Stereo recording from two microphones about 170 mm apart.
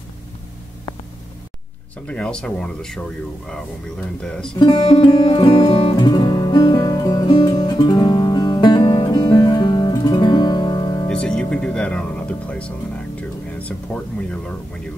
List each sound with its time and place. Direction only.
2.0 s speech: 5° left (ahead or behind)
4.6 s speech: 35° left (ahead or behind)
5.0 s music: 25° left (ahead or behind)
11.1 s speech: 5° left (ahead or behind)